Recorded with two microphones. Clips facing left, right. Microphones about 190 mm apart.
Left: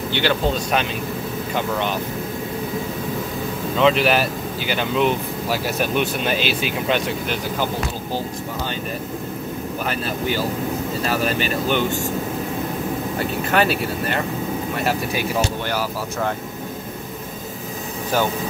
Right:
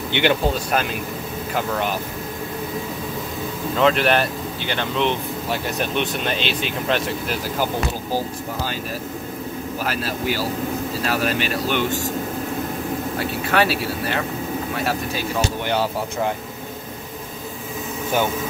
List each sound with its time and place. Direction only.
0.1 s speech: 15° right (ahead or behind)
3.8 s speech: centre (ahead or behind)
9.8 s speech: 5° right (ahead or behind)
13.5 s speech: centre (ahead or behind)